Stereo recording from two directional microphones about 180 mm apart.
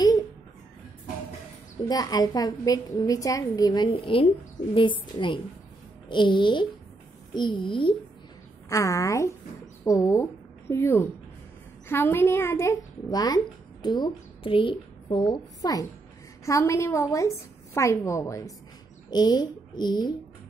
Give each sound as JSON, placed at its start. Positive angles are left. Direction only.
{"t": 1.9, "sound": "a woman's voice", "side_deg": 20}
{"t": 8.6, "sound": "a child's voice", "side_deg": 15}